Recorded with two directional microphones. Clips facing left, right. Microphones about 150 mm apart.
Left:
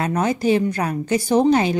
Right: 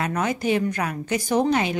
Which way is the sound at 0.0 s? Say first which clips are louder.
Left 4 dB; 30° left (ahead or behind).